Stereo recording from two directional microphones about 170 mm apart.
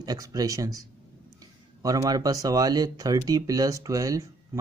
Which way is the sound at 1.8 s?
20° right (ahead or behind).